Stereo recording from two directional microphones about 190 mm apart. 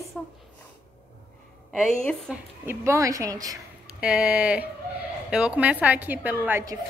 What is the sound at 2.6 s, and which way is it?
Speech, 15° right (ahead or behind).